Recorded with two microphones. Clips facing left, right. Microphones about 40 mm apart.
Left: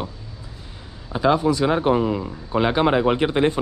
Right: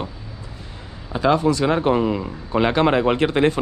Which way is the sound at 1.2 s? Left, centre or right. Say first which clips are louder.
Right 1 dB; right.